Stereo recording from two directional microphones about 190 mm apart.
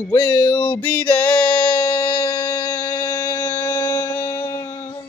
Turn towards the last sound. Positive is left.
turn(degrees=15)  # may be behind; listen again after turning